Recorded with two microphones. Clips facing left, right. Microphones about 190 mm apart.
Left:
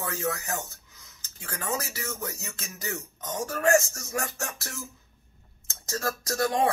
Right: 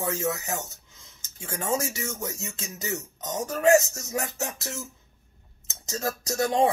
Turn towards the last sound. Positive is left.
turn(degrees=-20)  # may be behind; listen again after turning